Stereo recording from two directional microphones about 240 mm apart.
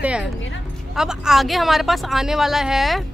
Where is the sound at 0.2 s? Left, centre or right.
Left.